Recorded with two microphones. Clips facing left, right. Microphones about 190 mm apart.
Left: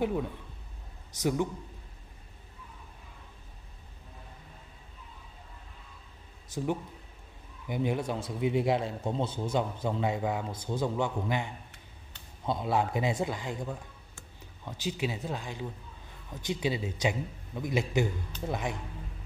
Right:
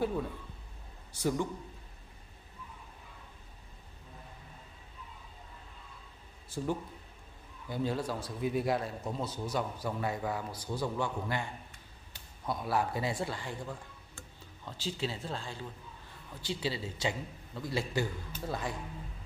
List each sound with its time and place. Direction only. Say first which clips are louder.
0.0 s speech: left 3 dB; 15° left (ahead or behind)
6.5 s speech: left 2 dB; 20° left (ahead or behind)